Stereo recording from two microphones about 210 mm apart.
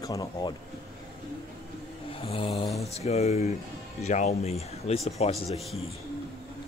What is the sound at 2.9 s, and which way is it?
Speech, 30° left (ahead or behind).